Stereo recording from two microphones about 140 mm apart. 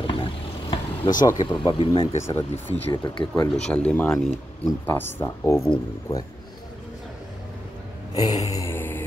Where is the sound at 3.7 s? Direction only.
10° left (ahead or behind).